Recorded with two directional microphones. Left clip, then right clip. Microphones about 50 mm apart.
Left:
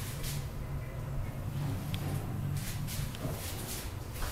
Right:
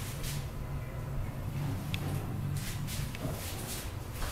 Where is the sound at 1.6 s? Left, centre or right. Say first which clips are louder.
Right 1 dB; centre.